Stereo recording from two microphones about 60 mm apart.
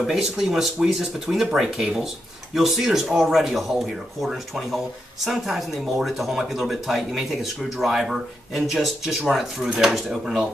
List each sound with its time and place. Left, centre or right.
0.0 s speech: centre